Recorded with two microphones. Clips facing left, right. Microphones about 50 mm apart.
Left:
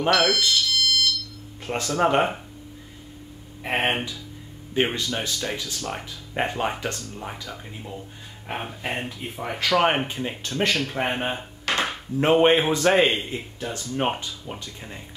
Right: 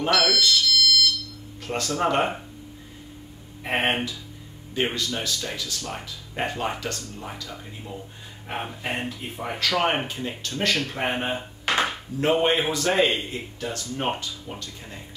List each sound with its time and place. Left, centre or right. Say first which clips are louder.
0.0 s speech: left 2 dB; centre
0.4 s alarm: right 1 dB; centre
1.7 s speech: left 2 dB; centre
3.6 s speech: even; centre
4.9 s speech: left 1 dB; left
8.5 s speech: even; centre
9.6 s speech: left 3 dB; centre
11.6 s a sound: right 1 dB; centre
12.2 s speech: left 4 dB; left